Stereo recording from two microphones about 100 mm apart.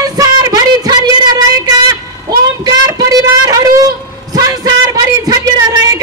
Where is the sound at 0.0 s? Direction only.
40° right (ahead or behind).